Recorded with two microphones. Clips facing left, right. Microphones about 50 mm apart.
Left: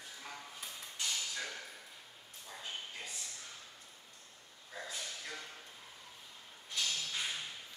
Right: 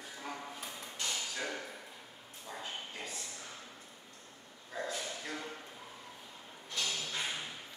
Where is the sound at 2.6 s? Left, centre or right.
Centre.